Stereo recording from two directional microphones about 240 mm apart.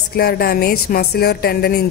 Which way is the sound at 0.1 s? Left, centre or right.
Left.